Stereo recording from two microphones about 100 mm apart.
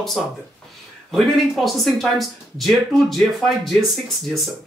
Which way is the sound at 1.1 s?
Centre (ahead or behind).